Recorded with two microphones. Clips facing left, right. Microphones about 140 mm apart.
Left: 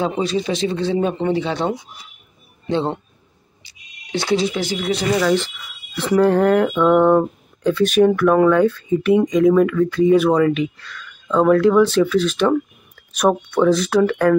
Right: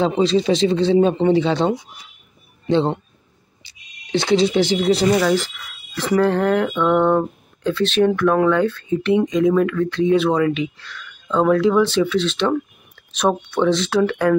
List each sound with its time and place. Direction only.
0.0 s speech: 25° right (ahead or behind)
3.6 s speech: 25° right (ahead or behind)
5.1 s speech: 5° right (ahead or behind)